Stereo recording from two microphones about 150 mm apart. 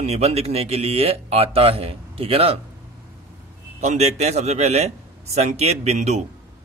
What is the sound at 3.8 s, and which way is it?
A man's voice, 45° right (ahead or behind).